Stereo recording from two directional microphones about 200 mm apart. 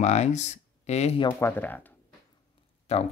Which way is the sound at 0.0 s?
35° left (ahead or behind).